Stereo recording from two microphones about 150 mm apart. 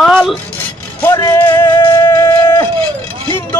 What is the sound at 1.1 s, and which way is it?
Music, 20° left (ahead or behind).